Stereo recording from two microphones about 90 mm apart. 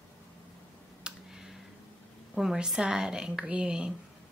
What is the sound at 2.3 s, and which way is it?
A woman's voice, 5° right (ahead or behind).